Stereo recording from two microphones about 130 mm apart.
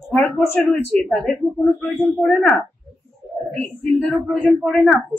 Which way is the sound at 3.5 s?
60° right (ahead or behind).